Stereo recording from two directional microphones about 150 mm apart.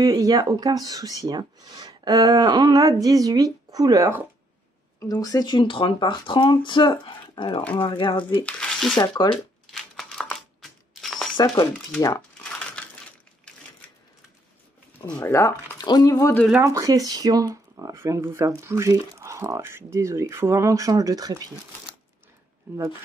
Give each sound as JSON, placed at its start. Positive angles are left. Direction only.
{"t": 0.0, "sound": "speech", "side_deg": -25}
{"t": 5.0, "sound": "speech", "side_deg": 25}
{"t": 8.5, "sound": "speech", "side_deg": 5}
{"t": 8.9, "sound": "speech", "side_deg": 25}
{"t": 9.7, "sound": "crumpling", "side_deg": 0}
{"t": 11.3, "sound": "speech", "side_deg": 25}
{"t": 12.5, "sound": "crushing", "side_deg": 10}
{"t": 13.5, "sound": "a sound", "side_deg": 5}
{"t": 15.1, "sound": "speech", "side_deg": 15}
{"t": 15.8, "sound": "speech", "side_deg": 25}
{"t": 16.6, "sound": "speech", "side_deg": -20}